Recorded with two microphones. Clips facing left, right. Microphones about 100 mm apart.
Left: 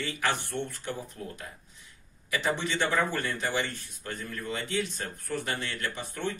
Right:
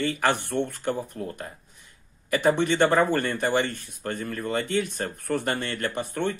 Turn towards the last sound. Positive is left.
turn(degrees=-60)  # may be behind; listen again after turning